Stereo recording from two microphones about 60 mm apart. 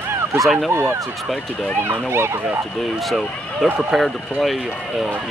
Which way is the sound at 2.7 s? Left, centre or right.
Centre.